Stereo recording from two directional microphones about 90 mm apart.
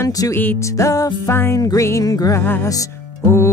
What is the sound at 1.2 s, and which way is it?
Speech, 30° left (ahead or behind).